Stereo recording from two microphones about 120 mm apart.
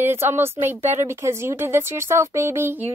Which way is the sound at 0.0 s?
20° right (ahead or behind).